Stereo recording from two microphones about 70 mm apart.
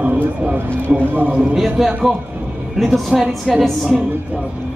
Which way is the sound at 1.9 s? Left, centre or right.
Centre.